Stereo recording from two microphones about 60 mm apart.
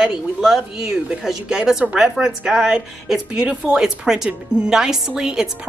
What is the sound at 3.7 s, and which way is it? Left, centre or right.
Speech, centre.